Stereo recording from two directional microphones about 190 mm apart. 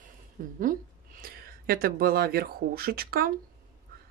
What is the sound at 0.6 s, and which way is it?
Speech, 45° right (ahead or behind).